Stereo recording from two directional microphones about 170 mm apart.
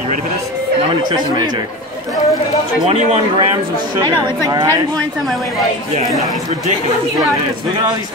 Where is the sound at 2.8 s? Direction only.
35° right (ahead or behind).